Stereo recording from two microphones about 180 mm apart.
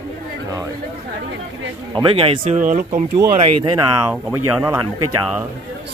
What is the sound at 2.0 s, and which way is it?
Speech, 30° right (ahead or behind).